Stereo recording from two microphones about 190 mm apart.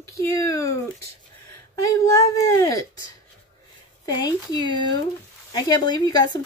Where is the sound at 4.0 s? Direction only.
20° left (ahead or behind).